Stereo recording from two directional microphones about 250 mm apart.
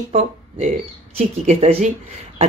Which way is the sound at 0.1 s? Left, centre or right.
Right.